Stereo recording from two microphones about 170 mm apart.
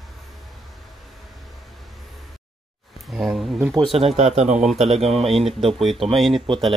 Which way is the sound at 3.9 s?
35° right (ahead or behind).